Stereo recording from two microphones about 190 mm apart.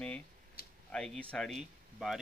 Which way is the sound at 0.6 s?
55° left (ahead or behind).